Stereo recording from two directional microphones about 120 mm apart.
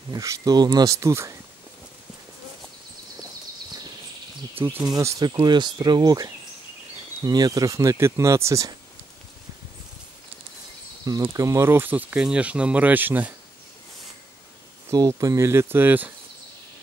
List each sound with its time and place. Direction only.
0.1 s speech: 30° right (ahead or behind)
4.6 s speech: 20° right (ahead or behind)
4.8 s speech: 30° right (ahead or behind)
11.2 s speech: 25° right (ahead or behind)
14.9 s speech: 25° right (ahead or behind)